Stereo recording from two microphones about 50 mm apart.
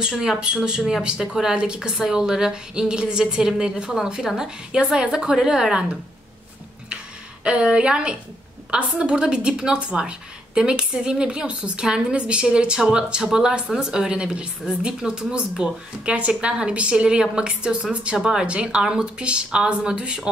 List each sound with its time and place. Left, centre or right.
0.0 s a woman's voice: centre
7.4 s a woman's voice: centre